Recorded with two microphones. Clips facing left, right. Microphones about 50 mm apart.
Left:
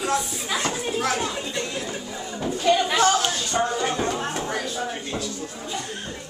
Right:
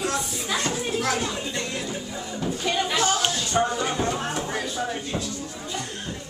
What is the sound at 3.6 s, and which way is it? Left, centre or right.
Speech, centre.